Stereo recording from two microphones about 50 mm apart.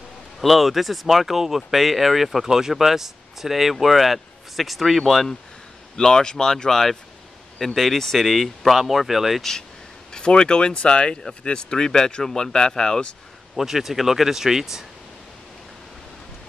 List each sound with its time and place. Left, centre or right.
0.4 s speech: centre
5.9 s speech: centre
9.4 s speech: centre
13.6 s speech: centre